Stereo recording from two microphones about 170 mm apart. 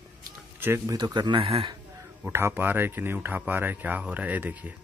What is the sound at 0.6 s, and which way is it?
A man's voice, 15° right (ahead or behind).